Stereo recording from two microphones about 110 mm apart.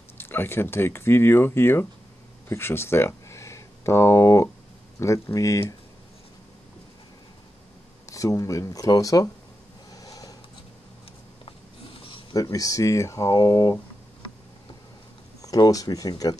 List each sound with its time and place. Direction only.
0.2 s speech: 20° left (ahead or behind)
8.1 s speech: 30° left (ahead or behind)
9.8 s a sound: 35° left (ahead or behind)
12.4 s speech: 30° left (ahead or behind)
15.4 s speech: 35° left (ahead or behind)